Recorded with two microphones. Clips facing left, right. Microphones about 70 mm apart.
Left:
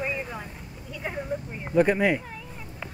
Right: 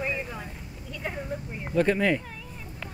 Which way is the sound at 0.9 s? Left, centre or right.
Centre.